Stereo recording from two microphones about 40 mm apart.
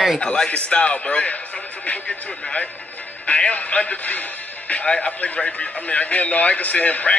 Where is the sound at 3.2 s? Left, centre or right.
Left.